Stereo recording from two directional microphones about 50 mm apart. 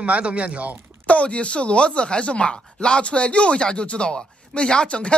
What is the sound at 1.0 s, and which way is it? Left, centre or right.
Speech, left.